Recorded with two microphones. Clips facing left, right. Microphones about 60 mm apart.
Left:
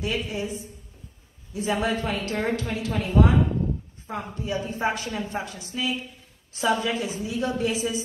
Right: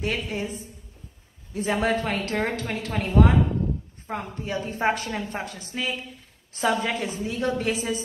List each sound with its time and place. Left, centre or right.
0.0 s a woman's voice: right